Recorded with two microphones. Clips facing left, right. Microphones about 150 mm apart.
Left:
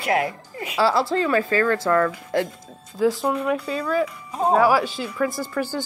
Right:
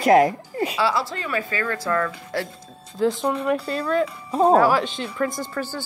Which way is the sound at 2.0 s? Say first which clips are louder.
Left 5 dB; 20° left (ahead or behind).